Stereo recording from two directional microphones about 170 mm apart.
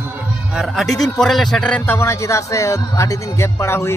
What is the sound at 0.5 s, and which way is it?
A man's voice, centre (ahead or behind).